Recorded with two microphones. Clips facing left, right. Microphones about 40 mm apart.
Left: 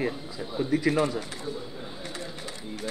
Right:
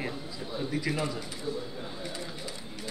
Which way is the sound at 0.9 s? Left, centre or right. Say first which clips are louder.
Left 8 dB; left.